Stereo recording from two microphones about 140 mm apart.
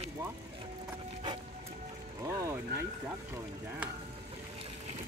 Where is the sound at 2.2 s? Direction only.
20° right (ahead or behind).